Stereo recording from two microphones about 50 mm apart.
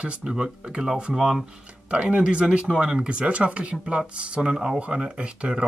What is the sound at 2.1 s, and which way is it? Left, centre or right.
Speech, right.